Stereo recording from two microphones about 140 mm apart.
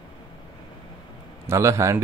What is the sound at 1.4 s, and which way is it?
Speech, 20° right (ahead or behind).